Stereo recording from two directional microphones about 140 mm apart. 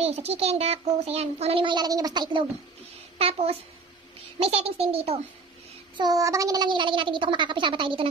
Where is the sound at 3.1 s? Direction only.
45° right (ahead or behind).